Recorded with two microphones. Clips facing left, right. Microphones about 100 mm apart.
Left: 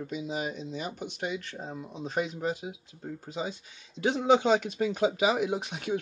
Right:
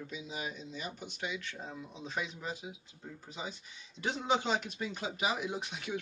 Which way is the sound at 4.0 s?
80° left.